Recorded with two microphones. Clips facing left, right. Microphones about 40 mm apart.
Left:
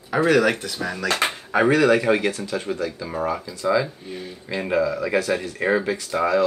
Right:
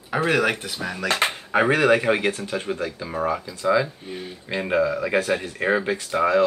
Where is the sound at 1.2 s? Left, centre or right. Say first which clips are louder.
Even; centre.